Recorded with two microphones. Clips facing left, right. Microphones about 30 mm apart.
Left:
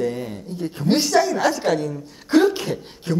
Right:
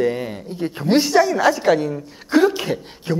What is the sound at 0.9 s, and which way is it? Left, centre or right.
Speech, centre.